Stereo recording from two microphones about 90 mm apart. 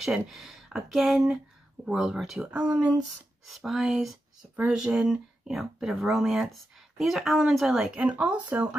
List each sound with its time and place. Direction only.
0.0 s speech: centre (ahead or behind)
3.4 s speech: centre (ahead or behind)